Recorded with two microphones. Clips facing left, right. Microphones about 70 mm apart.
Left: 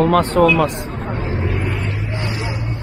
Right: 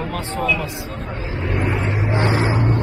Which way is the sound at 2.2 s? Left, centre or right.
Right.